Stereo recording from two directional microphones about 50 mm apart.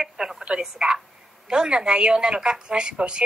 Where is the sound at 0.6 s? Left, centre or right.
Centre.